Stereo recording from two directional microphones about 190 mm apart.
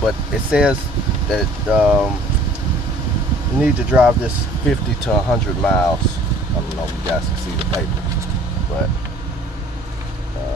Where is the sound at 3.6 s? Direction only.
5° right (ahead or behind).